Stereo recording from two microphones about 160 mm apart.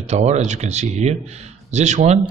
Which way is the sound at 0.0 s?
45° right (ahead or behind).